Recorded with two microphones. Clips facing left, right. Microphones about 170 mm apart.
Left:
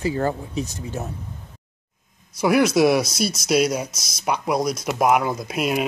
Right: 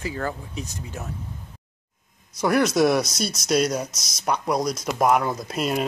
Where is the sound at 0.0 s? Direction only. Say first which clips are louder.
Left 6 dB; 30° left (ahead or behind).